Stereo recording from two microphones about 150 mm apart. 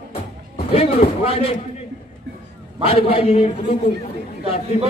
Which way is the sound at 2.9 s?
40° left (ahead or behind).